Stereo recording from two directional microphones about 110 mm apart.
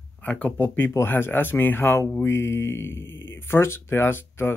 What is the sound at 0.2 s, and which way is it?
Speech, 10° left (ahead or behind).